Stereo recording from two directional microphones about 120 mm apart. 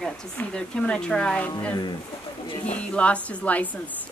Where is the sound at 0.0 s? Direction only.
5° left (ahead or behind).